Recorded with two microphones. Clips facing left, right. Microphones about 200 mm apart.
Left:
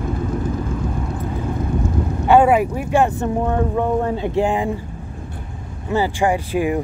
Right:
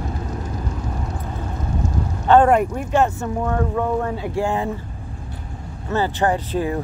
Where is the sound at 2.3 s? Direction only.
5° left (ahead or behind).